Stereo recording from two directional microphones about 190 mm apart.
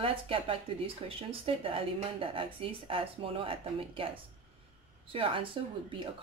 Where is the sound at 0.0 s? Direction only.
30° right (ahead or behind).